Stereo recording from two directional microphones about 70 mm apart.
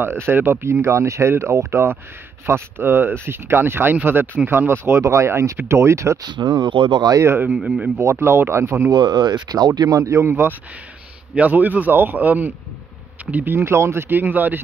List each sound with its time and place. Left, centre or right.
0.0 s speech: right
6.2 s speech: right
7.5 s speech: centre
8.0 s speech: right
8.9 s speech: right
9.8 s speech: right
10.2 s speech: right
11.3 s speech: right